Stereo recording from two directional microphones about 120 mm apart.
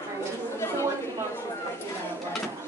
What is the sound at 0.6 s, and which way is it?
Chatter, 20° left (ahead or behind).